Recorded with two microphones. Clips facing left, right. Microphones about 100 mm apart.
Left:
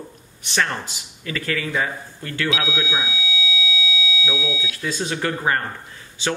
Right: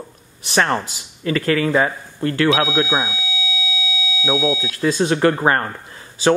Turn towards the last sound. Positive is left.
turn(degrees=-40)  # may be behind; listen again after turning